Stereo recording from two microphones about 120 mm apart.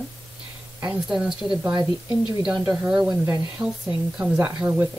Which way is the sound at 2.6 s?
5° right (ahead or behind).